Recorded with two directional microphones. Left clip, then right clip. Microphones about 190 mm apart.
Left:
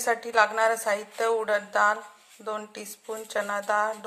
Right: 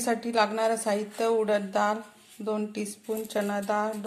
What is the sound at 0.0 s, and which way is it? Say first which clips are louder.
A woman's voice: left 3 dB; centre (ahead or behind).